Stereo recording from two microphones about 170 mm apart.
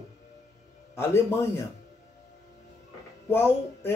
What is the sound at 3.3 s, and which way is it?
Speech, 15° left (ahead or behind).